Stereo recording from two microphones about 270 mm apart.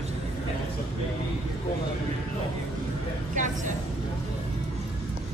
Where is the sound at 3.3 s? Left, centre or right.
Right.